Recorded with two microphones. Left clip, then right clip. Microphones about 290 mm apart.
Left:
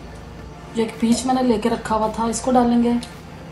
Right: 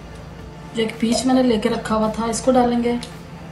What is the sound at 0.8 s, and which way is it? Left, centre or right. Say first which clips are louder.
A woman's voice: right 1 dB; centre.